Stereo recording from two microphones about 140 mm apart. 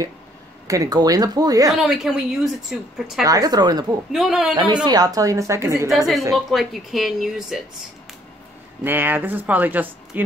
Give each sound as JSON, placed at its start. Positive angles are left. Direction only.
{"t": 0.7, "sound": "speech", "side_deg": -25}
{"t": 1.7, "sound": "a woman's voice", "side_deg": 0}
{"t": 3.3, "sound": "speech", "side_deg": -25}
{"t": 4.1, "sound": "a woman's voice", "side_deg": -5}
{"t": 4.8, "sound": "speech", "side_deg": -25}
{"t": 5.9, "sound": "a woman's voice", "side_deg": 0}
{"t": 8.8, "sound": "speech", "side_deg": -15}